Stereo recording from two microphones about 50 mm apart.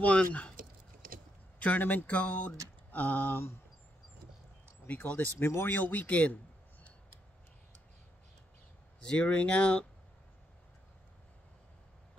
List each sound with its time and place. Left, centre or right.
0.0 s speech: left
1.6 s speech: left
4.8 s speech: left
5.4 s speech: left
5.8 s speech: left
9.0 s speech: left